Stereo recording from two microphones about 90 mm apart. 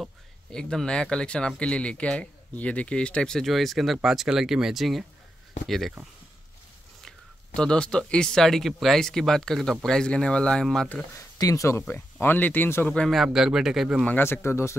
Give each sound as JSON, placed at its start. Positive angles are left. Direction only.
{"t": 0.5, "sound": "speech", "side_deg": 10}
{"t": 7.0, "sound": "speech", "side_deg": 5}
{"t": 11.1, "sound": "speech", "side_deg": 40}
{"t": 11.9, "sound": "speech", "side_deg": 25}
{"t": 12.9, "sound": "speech", "side_deg": 5}
{"t": 14.0, "sound": "speech", "side_deg": 20}